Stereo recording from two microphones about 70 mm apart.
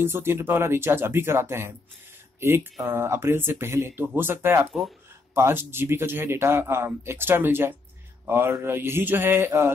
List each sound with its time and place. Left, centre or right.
0.0 s a man's voice: right